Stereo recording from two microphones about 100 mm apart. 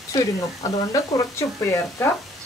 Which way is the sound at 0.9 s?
35° left (ahead or behind).